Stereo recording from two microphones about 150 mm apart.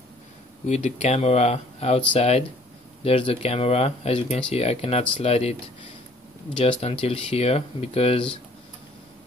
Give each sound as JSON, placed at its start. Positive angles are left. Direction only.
{"t": 0.7, "sound": "speech", "side_deg": 50}
{"t": 6.6, "sound": "speech", "side_deg": 40}